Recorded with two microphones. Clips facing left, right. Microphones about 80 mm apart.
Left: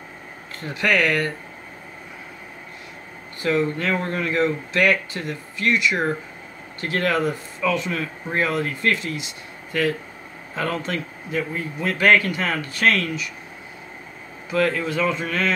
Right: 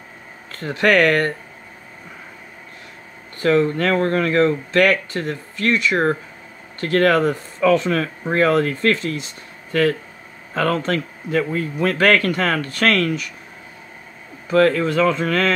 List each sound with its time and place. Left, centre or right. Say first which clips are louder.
0.6 s speech: right 5 dB; right
3.4 s speech: right 5 dB; right
7.9 s speech: right 6 dB; right
8.9 s speech: right 3 dB; right
11.5 s a man's voice: right 5 dB; centre
12.0 s speech: right 1 dB; right
14.8 s speech: right 5 dB; right